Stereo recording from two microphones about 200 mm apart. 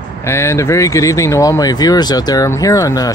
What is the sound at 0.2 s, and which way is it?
Speech, 15° left (ahead or behind).